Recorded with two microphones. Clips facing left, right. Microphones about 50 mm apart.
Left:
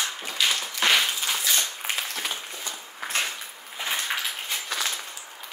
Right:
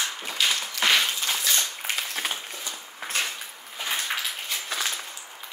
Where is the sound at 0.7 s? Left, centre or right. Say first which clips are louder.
Even; centre.